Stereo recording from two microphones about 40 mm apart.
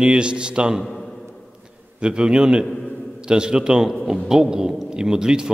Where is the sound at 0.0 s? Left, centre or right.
Right.